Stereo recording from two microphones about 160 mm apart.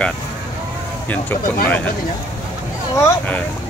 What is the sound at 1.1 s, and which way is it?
Speech, 10° left (ahead or behind).